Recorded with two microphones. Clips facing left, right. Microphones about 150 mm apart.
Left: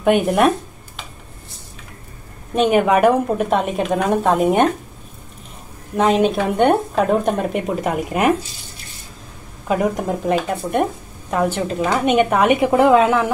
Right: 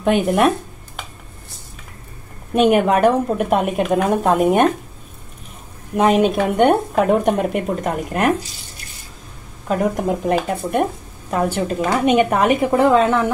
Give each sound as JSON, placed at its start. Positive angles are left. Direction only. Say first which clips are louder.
{"t": 0.0, "sound": "a woman's voice", "louder": "left 1 dB", "side_deg": 5}
{"t": 2.5, "sound": "a woman's voice", "louder": "right 1 dB", "side_deg": -5}
{"t": 5.9, "sound": "a woman's voice", "louder": "right 1 dB", "side_deg": -10}
{"t": 9.7, "sound": "a woman's voice", "louder": "even", "side_deg": 0}